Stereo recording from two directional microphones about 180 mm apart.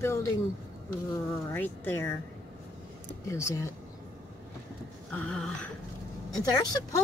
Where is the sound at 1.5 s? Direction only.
10° left (ahead or behind).